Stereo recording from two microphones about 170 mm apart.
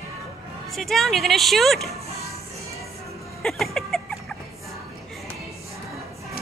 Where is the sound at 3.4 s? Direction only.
Centre (ahead or behind).